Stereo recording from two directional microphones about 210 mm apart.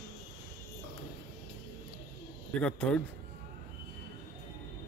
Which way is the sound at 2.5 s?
5° left (ahead or behind).